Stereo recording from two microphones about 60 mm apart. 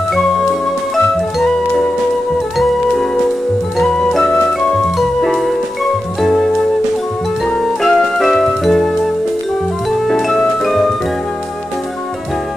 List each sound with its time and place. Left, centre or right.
0.9 s music: centre
3.7 s music: centre
7.6 s music: centre
10.0 s music: centre